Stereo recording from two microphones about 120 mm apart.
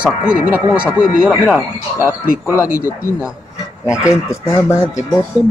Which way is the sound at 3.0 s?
20° left (ahead or behind).